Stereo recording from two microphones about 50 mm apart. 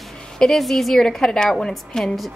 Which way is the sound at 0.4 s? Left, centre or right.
Centre.